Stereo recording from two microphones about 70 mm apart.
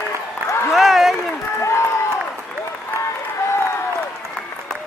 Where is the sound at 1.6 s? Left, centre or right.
Left.